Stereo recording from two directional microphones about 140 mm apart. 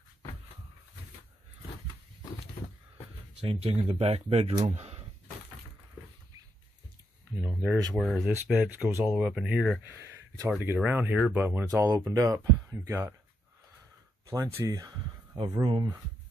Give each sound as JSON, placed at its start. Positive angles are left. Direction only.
{"t": 3.4, "sound": "speech", "side_deg": -40}
{"t": 4.6, "sound": "a sound", "side_deg": -45}
{"t": 7.9, "sound": "speech", "side_deg": 0}
{"t": 9.8, "sound": "speech", "side_deg": -20}
{"t": 14.2, "sound": "speech", "side_deg": -25}